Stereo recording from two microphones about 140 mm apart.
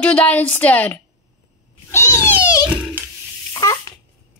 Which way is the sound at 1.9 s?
20° left (ahead or behind).